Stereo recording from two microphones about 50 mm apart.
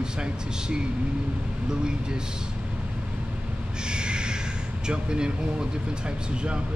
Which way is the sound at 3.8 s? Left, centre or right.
Centre.